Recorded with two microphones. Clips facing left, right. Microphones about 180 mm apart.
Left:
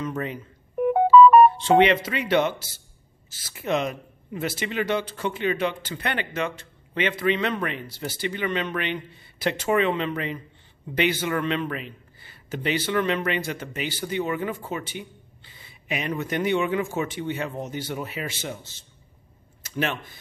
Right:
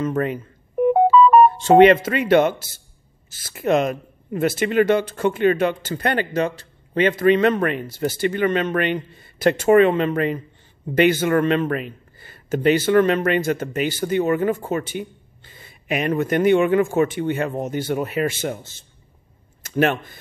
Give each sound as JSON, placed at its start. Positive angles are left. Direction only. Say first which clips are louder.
{"t": 0.0, "sound": "a man's voice", "louder": "right 7 dB", "side_deg": -50}
{"t": 1.6, "sound": "a man's voice", "louder": "right 7 dB", "side_deg": -45}